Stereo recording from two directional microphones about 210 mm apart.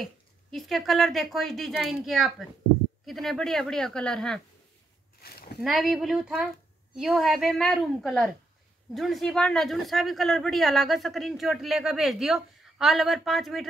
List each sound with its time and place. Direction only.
0.0 s speech: centre (ahead or behind)
5.2 s a sound: 50° left (ahead or behind)
5.6 s speech: centre (ahead or behind)